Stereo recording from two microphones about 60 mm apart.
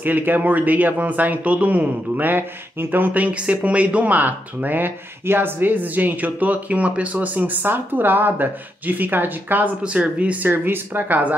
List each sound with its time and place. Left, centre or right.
0.0 s a man's voice: right
9.8 s a man's voice: right